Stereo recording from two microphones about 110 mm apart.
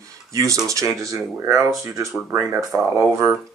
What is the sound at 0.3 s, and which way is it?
Speech, 30° right (ahead or behind).